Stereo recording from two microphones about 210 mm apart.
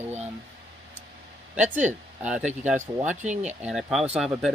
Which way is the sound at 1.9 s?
5° right (ahead or behind).